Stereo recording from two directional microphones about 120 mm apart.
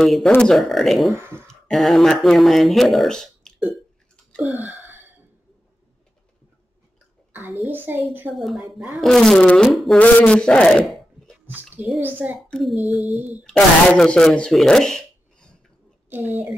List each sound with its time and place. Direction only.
0.0 s a sound: centre (ahead or behind)
1.1 s speech: 20° right (ahead or behind)
1.5 s speech: centre (ahead or behind)
4.3 s a sound: centre (ahead or behind)
7.6 s a child's voice: 15° right (ahead or behind)
8.4 s a sound: centre (ahead or behind)
10.1 s a man's voice: 10° left (ahead or behind)
11.4 s a child's voice: 15° right (ahead or behind)
12.4 s child singing: 5° left (ahead or behind)
13.4 s speech: 5° left (ahead or behind)
16.1 s a child's voice: 15° right (ahead or behind)